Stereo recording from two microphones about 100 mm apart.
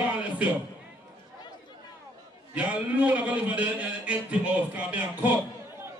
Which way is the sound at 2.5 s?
15° right (ahead or behind).